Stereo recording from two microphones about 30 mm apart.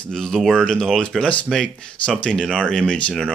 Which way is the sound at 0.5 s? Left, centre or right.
Centre.